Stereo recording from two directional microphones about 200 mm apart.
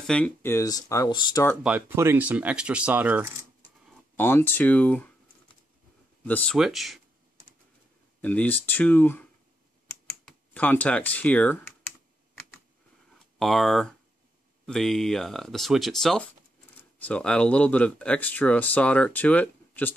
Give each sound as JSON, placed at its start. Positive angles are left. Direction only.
{"t": 0.0, "sound": "speech", "side_deg": 5}
{"t": 1.6, "sound": "speech", "side_deg": -5}
{"t": 4.2, "sound": "speech", "side_deg": 10}
{"t": 6.2, "sound": "speech", "side_deg": 5}
{"t": 8.2, "sound": "speech", "side_deg": 10}
{"t": 13.4, "sound": "speech", "side_deg": 0}